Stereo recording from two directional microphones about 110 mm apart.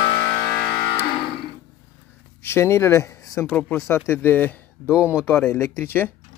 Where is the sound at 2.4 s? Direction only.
25° left (ahead or behind).